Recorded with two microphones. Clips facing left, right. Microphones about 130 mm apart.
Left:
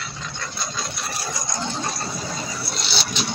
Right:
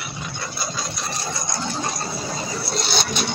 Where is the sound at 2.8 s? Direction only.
50° right (ahead or behind).